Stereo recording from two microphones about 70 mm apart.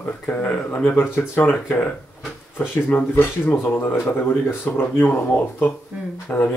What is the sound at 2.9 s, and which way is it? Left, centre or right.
Speech, left.